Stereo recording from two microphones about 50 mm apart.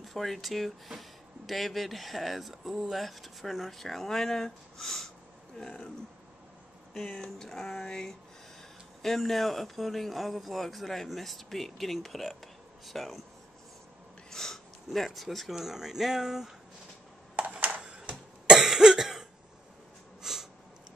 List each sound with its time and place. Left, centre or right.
0.0 s speech: centre
6.9 s speech: centre
14.3 s speech: centre
17.4 s cough: right
18.6 s cough: centre
20.2 s snort: centre